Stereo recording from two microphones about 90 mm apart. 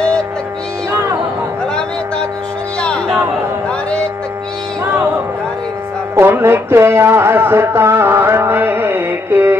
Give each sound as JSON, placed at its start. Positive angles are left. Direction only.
{"t": 6.1, "sound": "speech", "side_deg": -25}